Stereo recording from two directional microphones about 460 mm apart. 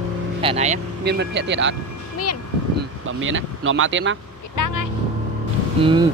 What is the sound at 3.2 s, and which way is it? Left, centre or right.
Speech, right.